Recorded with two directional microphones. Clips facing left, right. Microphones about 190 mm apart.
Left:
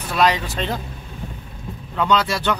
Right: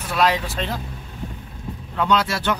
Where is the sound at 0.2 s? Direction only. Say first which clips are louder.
Left 1 dB; 5° right (ahead or behind).